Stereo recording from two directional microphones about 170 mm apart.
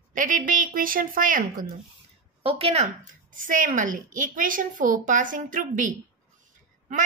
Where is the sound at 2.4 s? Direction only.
35° right (ahead or behind).